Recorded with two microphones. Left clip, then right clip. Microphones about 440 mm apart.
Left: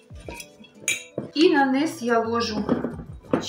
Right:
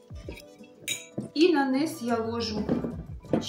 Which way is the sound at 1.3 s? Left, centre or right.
Right.